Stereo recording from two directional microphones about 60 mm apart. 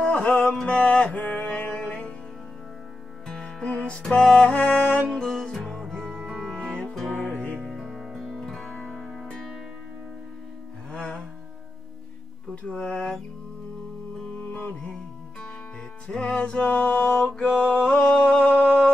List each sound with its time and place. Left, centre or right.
0.0 s mantra: centre
1.8 s music: centre
3.3 s music: centre
7.6 s music: centre
9.0 s music: centre
10.9 s music: centre
12.6 s music: centre
14.4 s music: left
16.1 s music: centre
17.8 s a sound: centre